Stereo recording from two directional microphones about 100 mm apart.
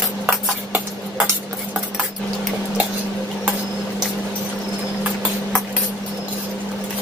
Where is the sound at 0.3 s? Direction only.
15° right (ahead or behind).